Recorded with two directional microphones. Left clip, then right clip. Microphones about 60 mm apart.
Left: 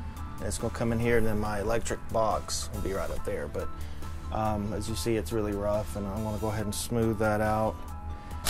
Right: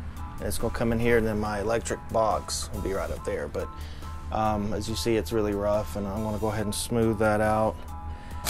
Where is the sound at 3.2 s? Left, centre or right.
Centre.